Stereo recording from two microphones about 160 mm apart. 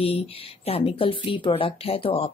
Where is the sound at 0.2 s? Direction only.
35° left (ahead or behind).